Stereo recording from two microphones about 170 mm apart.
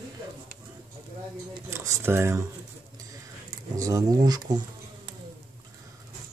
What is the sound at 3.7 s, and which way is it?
Speech, 20° right (ahead or behind).